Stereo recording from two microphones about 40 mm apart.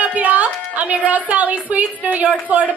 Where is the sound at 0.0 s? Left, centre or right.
Right.